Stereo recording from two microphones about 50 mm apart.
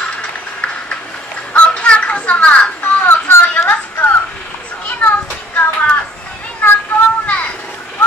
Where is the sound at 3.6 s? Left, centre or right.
Left.